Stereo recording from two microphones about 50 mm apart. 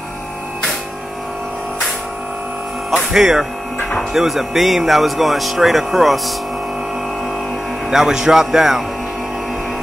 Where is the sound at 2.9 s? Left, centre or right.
Centre.